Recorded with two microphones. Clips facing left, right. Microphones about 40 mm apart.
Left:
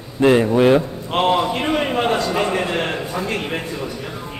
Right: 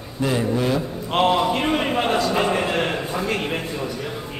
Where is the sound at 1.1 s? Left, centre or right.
Centre.